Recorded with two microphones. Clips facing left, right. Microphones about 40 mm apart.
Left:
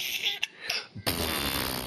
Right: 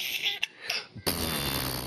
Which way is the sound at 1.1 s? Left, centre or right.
Left.